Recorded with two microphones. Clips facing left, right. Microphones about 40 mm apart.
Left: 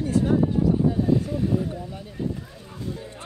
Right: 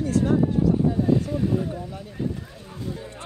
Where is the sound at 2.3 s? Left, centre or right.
Centre.